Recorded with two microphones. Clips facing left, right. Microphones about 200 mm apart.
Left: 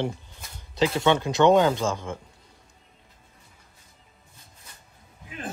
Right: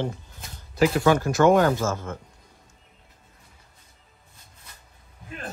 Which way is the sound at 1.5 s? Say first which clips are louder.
Even; 20° left (ahead or behind).